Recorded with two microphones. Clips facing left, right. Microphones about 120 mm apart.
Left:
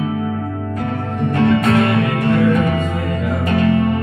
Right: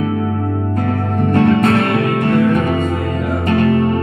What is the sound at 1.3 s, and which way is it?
Music, 55° right (ahead or behind).